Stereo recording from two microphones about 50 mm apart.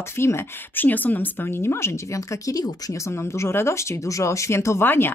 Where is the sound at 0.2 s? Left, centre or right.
Left.